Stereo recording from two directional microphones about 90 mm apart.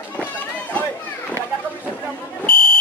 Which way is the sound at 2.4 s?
90° right.